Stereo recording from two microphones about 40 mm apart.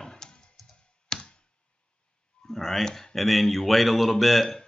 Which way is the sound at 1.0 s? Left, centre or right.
Centre.